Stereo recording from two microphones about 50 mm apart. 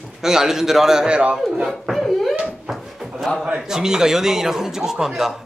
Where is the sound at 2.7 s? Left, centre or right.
Centre.